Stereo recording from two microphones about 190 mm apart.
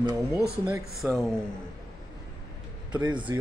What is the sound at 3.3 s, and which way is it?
Speech, 15° right (ahead or behind).